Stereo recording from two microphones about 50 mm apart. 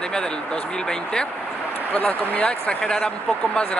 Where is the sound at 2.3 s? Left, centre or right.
Left.